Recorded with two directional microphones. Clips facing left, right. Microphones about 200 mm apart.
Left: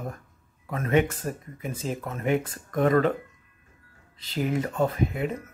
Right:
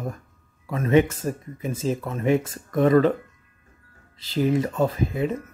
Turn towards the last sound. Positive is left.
turn(degrees=-25)  # may be behind; listen again after turning